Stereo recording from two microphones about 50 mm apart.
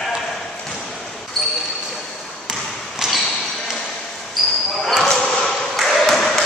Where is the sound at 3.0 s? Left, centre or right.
Centre.